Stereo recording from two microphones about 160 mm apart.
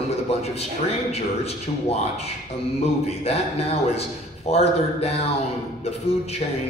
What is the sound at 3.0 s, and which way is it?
A man's voice, 40° left (ahead or behind).